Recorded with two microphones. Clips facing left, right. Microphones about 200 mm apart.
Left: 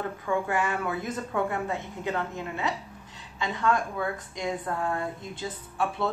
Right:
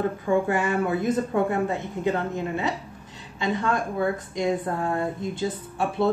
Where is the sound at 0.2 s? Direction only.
30° right (ahead or behind).